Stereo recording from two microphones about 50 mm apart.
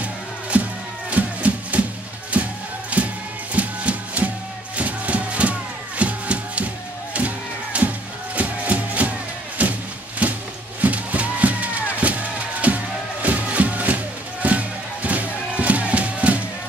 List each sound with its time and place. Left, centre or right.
0.0 s music: right
9.6 s a sound: right
10.8 s music: right